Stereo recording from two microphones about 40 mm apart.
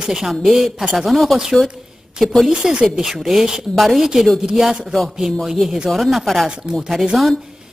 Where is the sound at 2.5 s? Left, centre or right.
Right.